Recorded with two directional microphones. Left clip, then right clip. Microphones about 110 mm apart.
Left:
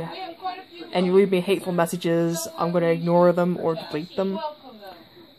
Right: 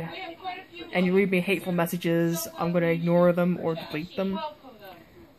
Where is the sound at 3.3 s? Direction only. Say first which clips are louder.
Left 3 dB; 25° left (ahead or behind).